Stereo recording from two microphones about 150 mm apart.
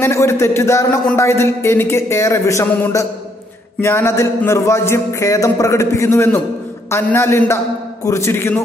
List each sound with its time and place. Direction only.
0.0 s a man's voice: 15° left (ahead or behind)